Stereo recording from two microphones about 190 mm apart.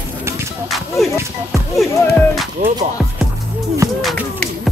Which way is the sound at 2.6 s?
40° right (ahead or behind).